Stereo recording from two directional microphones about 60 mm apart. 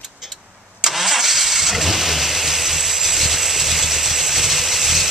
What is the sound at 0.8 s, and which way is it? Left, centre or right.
Vehicle, centre.